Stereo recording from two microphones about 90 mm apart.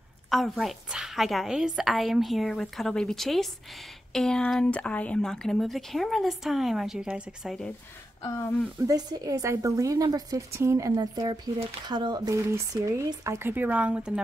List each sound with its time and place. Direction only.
0.3 s speech: centre (ahead or behind)
8.2 s speech: 30° left (ahead or behind)
8.9 s a woman's voice: 40° right (ahead or behind)
10.5 s a woman's voice: 30° right (ahead or behind)
11.0 s speech: 50° right (ahead or behind)
12.3 s a woman's voice: 35° right (ahead or behind); by 14.2 s 10° right (ahead or behind)